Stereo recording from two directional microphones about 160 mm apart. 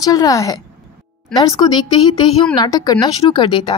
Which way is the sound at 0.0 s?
25° left (ahead or behind).